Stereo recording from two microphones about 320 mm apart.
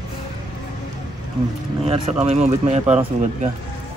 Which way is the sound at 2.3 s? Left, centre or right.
Right.